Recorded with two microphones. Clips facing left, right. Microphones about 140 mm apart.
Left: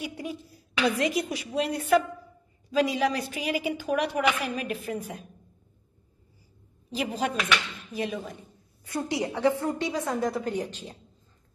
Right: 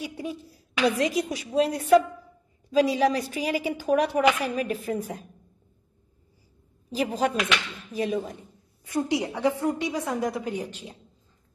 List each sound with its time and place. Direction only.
0.0 s a woman's voice: 35° right (ahead or behind)
7.0 s a woman's voice: 40° right (ahead or behind)
8.8 s a woman's voice: 20° right (ahead or behind)